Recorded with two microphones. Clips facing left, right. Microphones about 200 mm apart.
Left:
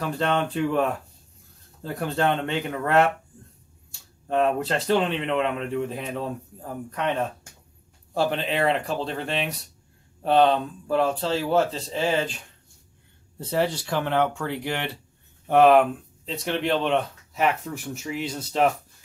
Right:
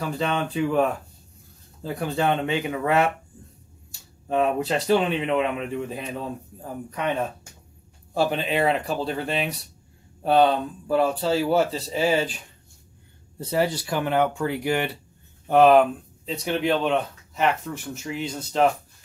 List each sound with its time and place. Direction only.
0.0 s speech: centre (ahead or behind)
4.3 s speech: 5° right (ahead or behind)
13.5 s speech: 5° right (ahead or behind)